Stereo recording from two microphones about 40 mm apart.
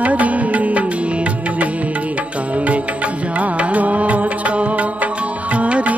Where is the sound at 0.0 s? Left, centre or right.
Right.